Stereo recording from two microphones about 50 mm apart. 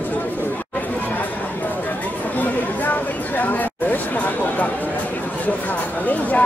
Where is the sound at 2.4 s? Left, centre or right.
Left.